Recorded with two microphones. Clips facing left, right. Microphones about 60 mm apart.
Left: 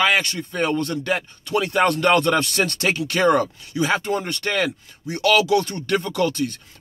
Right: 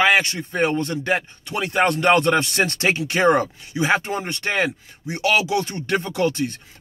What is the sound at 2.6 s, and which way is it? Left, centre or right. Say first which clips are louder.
Speech: right 1 dB; right.